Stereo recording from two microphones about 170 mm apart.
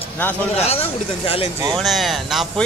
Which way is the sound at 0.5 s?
35° left (ahead or behind).